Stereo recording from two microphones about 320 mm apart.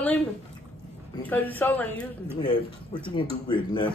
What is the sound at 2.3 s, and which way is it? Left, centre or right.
Speech, centre.